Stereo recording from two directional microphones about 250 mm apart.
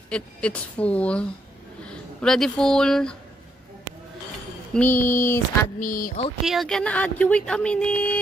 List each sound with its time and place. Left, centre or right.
0.1 s speech: centre
4.7 s a sound: centre
5.8 s speech: left
6.4 s speech: centre